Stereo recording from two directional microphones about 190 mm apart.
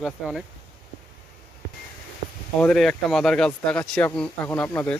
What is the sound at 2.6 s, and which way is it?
Speech, centre (ahead or behind).